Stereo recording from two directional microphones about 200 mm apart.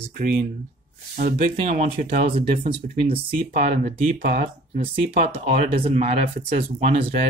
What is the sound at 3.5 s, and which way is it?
Speech, 45° right (ahead or behind).